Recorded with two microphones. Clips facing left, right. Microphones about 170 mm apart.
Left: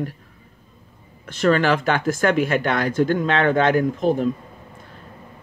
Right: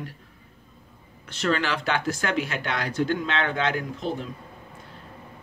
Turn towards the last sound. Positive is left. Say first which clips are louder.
# left 10 dB
turn(degrees=50)  # may be behind; listen again after turning